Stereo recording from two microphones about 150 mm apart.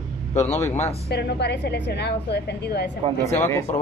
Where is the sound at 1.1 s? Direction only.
90° left.